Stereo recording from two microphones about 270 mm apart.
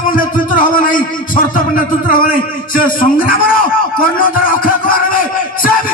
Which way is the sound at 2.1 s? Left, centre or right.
Left.